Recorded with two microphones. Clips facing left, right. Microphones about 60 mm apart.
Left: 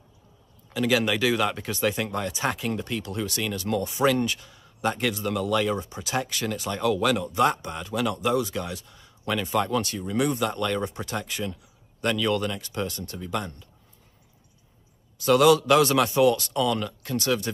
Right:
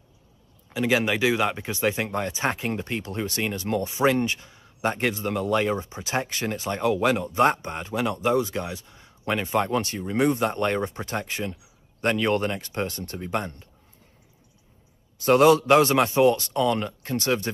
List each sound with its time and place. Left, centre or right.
0.7 s speech: right
15.2 s speech: right